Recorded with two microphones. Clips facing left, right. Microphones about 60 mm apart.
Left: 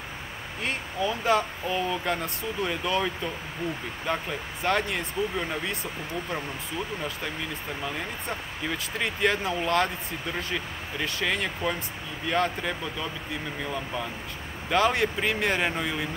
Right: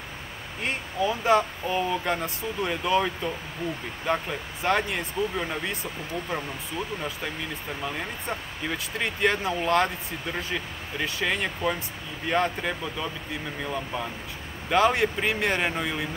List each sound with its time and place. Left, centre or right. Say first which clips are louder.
0.7 s speech: right 2 dB; centre
7.8 s speech: right 2 dB; centre